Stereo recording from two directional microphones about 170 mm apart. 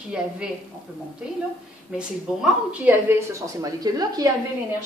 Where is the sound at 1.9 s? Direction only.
5° right (ahead or behind).